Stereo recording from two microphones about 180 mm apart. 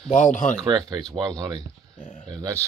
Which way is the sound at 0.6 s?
25° right (ahead or behind).